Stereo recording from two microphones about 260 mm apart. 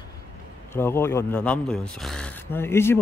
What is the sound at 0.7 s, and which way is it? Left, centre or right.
Speech, centre.